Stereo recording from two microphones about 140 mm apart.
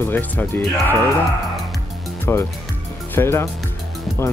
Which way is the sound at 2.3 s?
15° left (ahead or behind).